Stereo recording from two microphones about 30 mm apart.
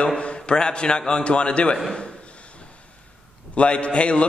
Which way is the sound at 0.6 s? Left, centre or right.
Left.